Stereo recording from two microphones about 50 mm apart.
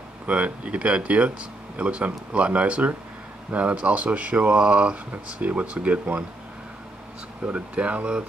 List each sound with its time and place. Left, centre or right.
0.3 s speech: right
7.4 s speech: right